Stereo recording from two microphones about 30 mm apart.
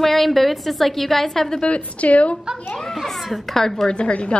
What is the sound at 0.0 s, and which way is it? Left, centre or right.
A woman's voice, centre.